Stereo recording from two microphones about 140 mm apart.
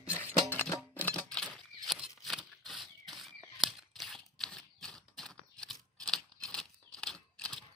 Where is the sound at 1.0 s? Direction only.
10° left (ahead or behind).